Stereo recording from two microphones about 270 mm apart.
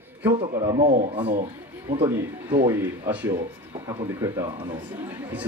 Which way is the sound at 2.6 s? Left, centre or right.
Centre.